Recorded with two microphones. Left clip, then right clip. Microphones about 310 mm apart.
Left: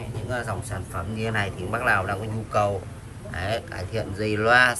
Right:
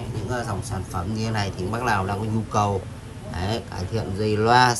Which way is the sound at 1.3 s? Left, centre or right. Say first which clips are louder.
Left 1 dB; centre.